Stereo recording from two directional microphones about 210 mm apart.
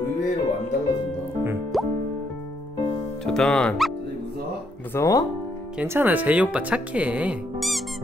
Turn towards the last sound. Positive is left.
turn(degrees=-5)  # may be behind; listen again after turning